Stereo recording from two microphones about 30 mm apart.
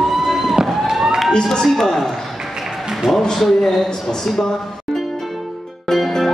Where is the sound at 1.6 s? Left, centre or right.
Centre.